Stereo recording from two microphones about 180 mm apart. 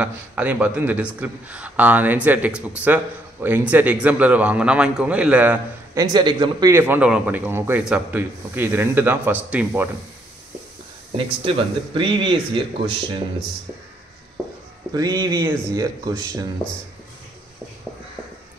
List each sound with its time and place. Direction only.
0.0 s a man's voice: 10° right (ahead or behind)
6.1 s a man's voice: 25° right (ahead or behind)
11.1 s speech: 30° right (ahead or behind)
14.9 s speech: 20° right (ahead or behind)